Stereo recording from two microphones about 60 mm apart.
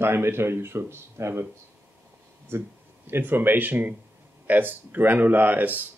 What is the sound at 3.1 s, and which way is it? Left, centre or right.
A man's voice, right.